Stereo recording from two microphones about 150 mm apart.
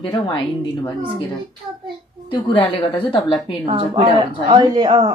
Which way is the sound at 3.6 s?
40° right (ahead or behind).